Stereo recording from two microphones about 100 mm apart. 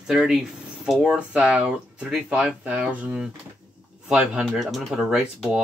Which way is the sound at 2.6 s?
15° right (ahead or behind).